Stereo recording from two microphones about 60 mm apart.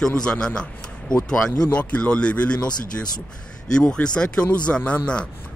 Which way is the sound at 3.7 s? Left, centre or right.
Centre.